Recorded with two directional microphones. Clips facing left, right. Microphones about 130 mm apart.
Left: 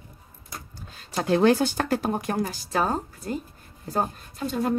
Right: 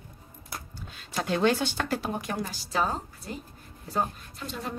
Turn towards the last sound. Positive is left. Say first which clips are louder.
# left 10 dB
turn(degrees=45)  # may be behind; listen again after turning